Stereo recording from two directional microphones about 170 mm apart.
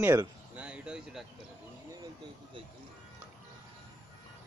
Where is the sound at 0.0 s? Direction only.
15° right (ahead or behind).